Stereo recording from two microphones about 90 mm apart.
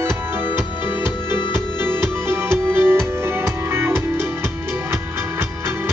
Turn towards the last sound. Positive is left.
turn(degrees=-25)  # may be behind; listen again after turning